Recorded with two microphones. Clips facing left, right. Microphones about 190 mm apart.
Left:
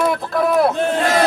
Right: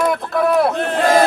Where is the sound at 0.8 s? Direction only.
55° right (ahead or behind).